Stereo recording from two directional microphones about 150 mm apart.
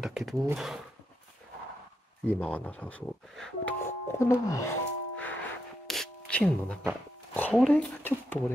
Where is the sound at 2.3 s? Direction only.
5° left (ahead or behind).